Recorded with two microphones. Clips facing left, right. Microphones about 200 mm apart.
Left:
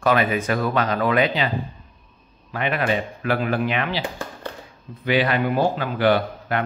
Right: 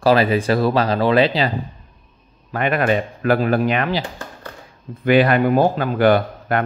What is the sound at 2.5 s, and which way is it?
Speech, 45° right (ahead or behind).